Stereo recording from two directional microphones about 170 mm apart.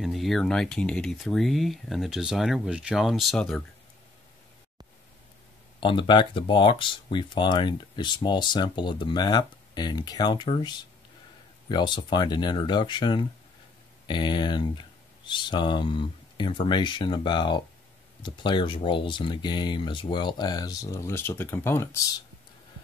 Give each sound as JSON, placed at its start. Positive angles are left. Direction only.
{"t": 0.0, "sound": "speech", "side_deg": 0}
{"t": 5.8, "sound": "speech", "side_deg": 30}